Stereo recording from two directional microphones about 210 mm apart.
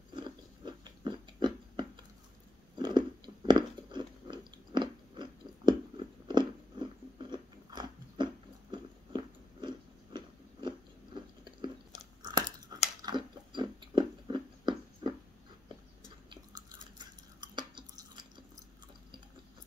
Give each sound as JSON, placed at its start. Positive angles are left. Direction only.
{"t": 0.1, "sound": "a sound", "side_deg": -20}
{"t": 2.8, "sound": "chewing", "side_deg": -20}
{"t": 8.7, "sound": "biting", "side_deg": -20}
{"t": 12.2, "sound": "crunch", "side_deg": -20}
{"t": 13.0, "sound": "chewing", "side_deg": -20}
{"t": 16.3, "sound": "chewing", "side_deg": -20}